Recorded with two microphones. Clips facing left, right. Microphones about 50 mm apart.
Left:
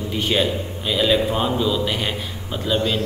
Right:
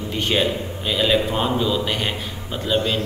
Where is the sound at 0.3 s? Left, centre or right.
Centre.